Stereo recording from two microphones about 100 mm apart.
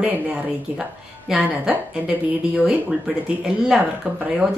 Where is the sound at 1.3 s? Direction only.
5° right (ahead or behind).